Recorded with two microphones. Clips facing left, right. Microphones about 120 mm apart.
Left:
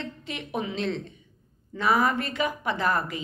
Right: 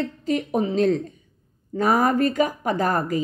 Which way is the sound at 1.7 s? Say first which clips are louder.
Right 4 dB; 45° right (ahead or behind).